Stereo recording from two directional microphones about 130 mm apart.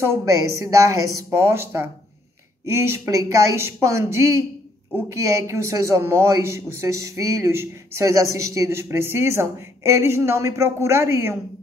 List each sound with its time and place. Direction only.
0.0 s speech: 20° right (ahead or behind)